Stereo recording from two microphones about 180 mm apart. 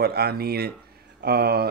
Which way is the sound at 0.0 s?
60° right (ahead or behind).